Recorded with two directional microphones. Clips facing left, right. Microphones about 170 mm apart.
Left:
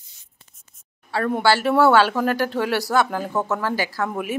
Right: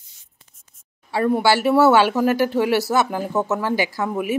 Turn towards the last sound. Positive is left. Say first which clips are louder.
# right 2 dB
turn(degrees=-15)  # may be behind; listen again after turning